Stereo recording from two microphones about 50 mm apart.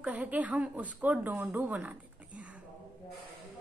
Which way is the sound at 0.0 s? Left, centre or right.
Right.